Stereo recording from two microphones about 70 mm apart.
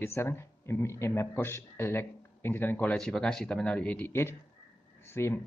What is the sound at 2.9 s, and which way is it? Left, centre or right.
Speech, centre.